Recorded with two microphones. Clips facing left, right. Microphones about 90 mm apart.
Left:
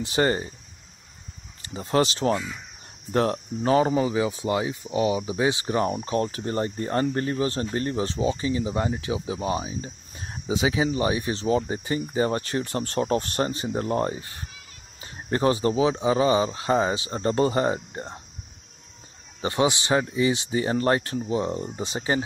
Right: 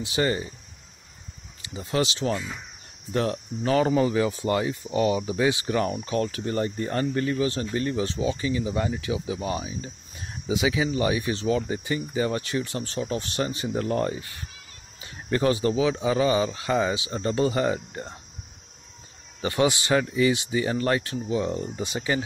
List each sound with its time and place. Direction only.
0.0 s speech: 40° left (ahead or behind)
1.6 s speech: 40° left (ahead or behind)
19.4 s speech: 25° left (ahead or behind)